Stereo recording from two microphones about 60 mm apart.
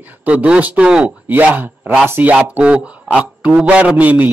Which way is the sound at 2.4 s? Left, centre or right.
Right.